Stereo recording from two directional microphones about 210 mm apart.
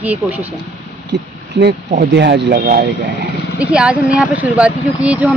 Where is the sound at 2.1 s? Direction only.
55° right (ahead or behind).